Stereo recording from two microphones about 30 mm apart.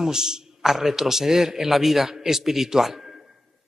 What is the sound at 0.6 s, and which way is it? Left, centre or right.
A man's voice, centre.